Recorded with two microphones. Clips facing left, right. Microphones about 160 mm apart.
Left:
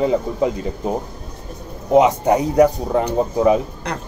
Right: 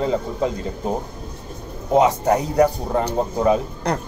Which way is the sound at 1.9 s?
15° left (ahead or behind).